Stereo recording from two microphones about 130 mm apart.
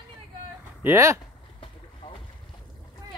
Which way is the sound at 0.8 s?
20° right (ahead or behind).